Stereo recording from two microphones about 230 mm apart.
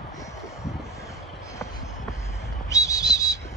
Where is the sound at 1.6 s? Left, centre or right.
Centre.